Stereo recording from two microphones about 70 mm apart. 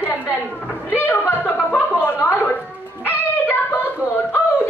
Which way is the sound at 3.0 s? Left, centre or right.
Left.